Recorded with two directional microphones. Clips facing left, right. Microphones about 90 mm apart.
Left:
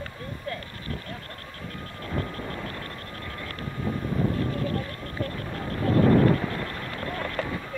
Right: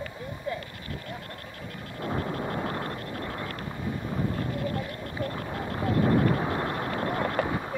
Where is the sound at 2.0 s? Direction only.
25° right (ahead or behind).